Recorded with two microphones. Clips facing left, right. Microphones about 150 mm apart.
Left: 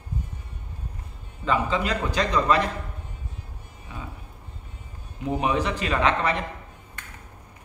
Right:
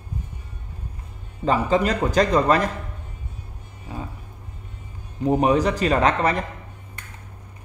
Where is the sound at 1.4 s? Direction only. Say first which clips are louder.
Right 5 dB; 40° right (ahead or behind).